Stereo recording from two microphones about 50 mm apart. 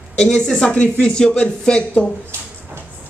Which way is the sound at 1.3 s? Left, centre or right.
Left.